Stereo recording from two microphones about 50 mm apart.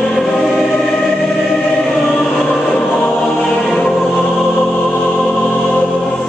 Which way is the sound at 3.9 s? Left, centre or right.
Centre.